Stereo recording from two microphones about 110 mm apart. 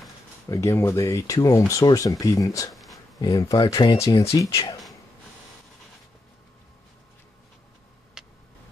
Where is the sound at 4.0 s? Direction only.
30° left (ahead or behind).